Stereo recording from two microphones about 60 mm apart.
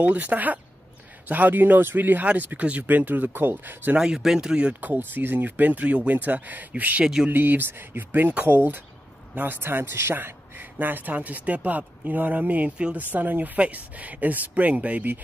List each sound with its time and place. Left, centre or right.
0.0 s a man's voice: right
3.9 s speech: centre
4.7 s a man's voice: right
13.1 s a man's voice: right